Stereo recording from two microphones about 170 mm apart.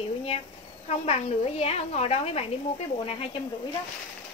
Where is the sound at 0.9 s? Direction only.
35° left (ahead or behind).